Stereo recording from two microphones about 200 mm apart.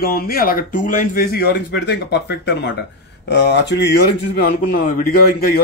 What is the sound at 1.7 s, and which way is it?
A man's voice, 55° left (ahead or behind).